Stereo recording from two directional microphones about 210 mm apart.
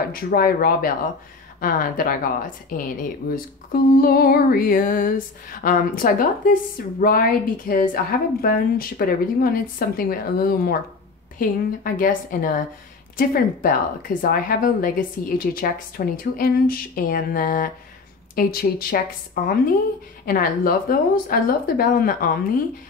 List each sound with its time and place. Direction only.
0.1 s a woman's voice: 45° left (ahead or behind)